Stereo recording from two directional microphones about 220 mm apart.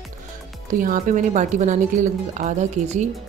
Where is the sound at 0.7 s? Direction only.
40° right (ahead or behind).